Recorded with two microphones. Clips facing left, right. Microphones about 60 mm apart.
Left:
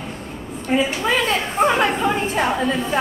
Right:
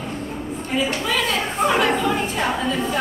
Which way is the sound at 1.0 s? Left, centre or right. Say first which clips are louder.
Left 2 dB; left.